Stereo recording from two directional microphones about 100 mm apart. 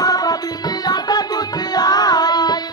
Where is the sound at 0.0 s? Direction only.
40° left (ahead or behind).